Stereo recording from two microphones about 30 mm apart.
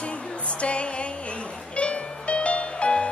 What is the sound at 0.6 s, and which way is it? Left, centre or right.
Music, left.